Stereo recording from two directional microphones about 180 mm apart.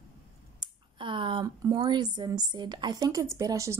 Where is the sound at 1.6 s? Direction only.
20° right (ahead or behind).